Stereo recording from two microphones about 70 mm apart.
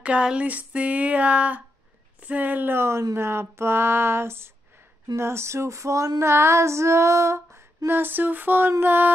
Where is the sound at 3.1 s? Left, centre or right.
Right.